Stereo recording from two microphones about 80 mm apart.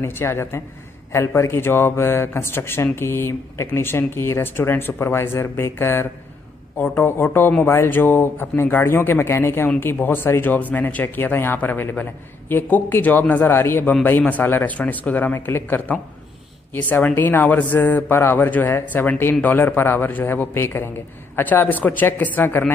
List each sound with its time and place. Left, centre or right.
0.0 s a man's voice: left